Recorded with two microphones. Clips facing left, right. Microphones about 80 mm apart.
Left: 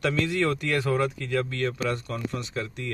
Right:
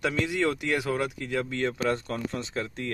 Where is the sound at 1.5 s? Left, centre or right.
Right.